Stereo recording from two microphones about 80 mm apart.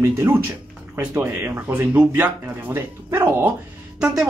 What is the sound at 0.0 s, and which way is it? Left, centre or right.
Speech, right.